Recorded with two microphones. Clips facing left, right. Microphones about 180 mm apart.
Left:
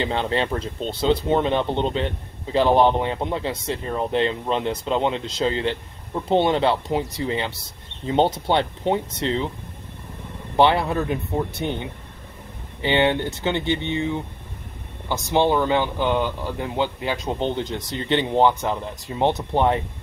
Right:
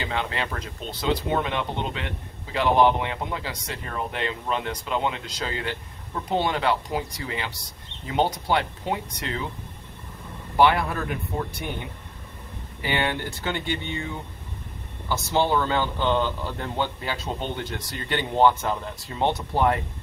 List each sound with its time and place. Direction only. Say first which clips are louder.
0.0 s speech: left 6 dB; 30° left (ahead or behind)
10.5 s speech: left 2 dB; 25° left (ahead or behind)